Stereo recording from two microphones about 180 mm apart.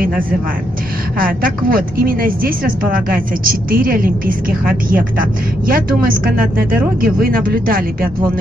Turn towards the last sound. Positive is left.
turn(degrees=-55)  # may be behind; listen again after turning